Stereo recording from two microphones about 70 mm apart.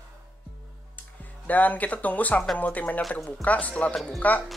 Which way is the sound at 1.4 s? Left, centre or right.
Left.